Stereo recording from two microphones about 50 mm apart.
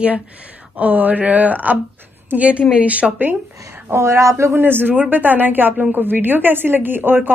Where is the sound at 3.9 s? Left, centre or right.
Right.